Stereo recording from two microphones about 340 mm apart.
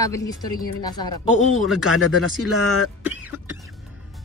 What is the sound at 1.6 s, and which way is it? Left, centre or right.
Speech, centre.